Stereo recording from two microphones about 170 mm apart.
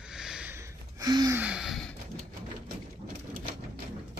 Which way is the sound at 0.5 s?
20° right (ahead or behind).